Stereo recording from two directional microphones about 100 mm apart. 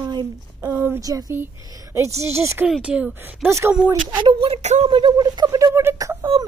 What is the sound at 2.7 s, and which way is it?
Speech, 10° right (ahead or behind).